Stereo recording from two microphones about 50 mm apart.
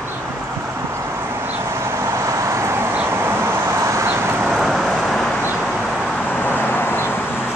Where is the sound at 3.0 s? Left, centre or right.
Right.